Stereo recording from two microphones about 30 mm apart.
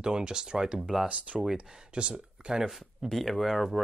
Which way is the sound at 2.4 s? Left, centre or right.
Right.